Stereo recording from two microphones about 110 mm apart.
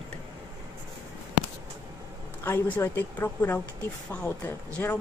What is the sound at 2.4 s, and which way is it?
A woman's voice, 20° left (ahead or behind).